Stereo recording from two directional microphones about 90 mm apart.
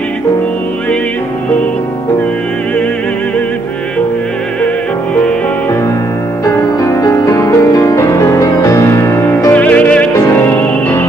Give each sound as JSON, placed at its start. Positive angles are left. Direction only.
{"t": 6.4, "sound": "music", "side_deg": 35}
{"t": 9.5, "sound": "music", "side_deg": 15}